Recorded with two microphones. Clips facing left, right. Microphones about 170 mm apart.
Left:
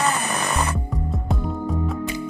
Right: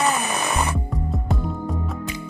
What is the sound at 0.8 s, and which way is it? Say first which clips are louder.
Music: even; centre (ahead or behind).